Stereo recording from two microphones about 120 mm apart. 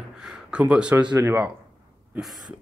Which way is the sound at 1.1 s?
25° right (ahead or behind).